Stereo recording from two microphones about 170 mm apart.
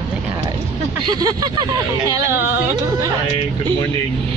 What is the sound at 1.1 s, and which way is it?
Speech, 25° right (ahead or behind).